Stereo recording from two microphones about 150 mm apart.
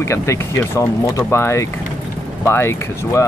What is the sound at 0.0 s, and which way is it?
Speech, 20° left (ahead or behind).